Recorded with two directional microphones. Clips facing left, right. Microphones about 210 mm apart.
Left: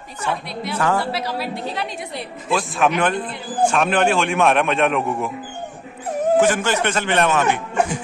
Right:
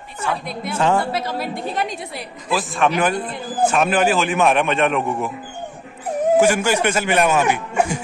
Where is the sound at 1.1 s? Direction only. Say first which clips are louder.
Right 1 dB; 50° right (ahead or behind).